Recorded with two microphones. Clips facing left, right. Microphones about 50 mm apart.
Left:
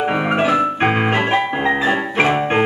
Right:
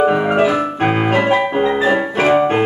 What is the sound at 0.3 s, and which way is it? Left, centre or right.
Piano, left.